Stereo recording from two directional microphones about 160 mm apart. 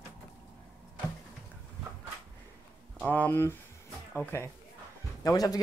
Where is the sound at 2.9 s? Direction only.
10° left (ahead or behind).